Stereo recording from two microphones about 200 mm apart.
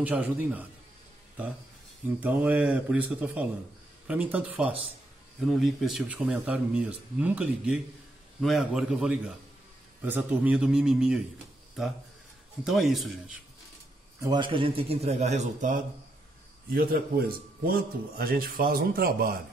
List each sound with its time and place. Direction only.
0.0 s speech: 10° right (ahead or behind)
2.1 s speech: 5° right (ahead or behind)
12.6 s speech: centre (ahead or behind)
14.2 s a man's voice: 20° right (ahead or behind)
16.7 s a man's voice: 45° right (ahead or behind)